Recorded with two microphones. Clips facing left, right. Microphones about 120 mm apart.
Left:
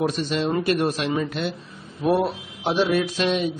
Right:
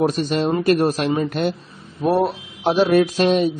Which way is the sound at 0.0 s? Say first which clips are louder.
Right 4 dB; 40° right (ahead or behind).